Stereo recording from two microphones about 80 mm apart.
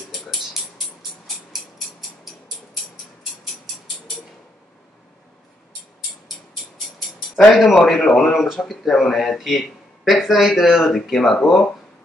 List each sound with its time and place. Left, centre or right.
0.3 s music: centre
1.5 s a sound: centre
7.3 s speech: centre